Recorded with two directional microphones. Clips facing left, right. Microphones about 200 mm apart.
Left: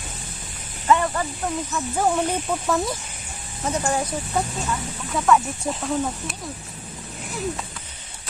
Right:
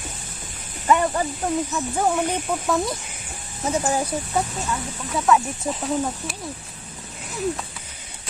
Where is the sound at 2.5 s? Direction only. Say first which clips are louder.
Even; centre (ahead or behind).